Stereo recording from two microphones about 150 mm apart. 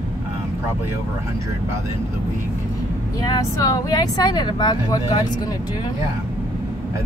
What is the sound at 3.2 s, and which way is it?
Speech, 25° left (ahead or behind).